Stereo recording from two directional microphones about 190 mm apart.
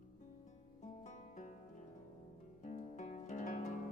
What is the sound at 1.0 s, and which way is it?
Music, 40° left (ahead or behind).